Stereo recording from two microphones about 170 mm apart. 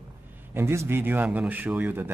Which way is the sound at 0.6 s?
15° right (ahead or behind).